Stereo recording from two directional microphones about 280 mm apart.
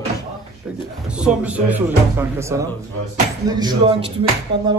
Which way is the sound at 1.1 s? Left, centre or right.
Centre.